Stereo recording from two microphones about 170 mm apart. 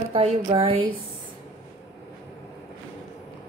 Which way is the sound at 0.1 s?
30° right (ahead or behind).